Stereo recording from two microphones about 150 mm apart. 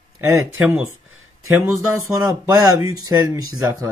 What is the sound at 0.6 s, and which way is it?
Speech, 5° right (ahead or behind).